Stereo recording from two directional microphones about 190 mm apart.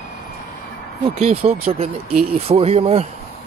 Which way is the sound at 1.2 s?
35° right (ahead or behind).